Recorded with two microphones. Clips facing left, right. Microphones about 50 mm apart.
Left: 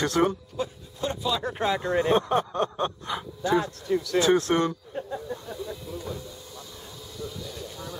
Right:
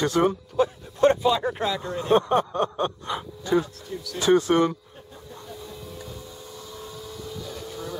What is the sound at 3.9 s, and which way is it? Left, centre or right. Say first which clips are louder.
Speech: left 13 dB; left.